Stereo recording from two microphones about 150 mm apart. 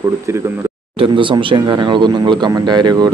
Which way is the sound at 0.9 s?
35° right (ahead or behind).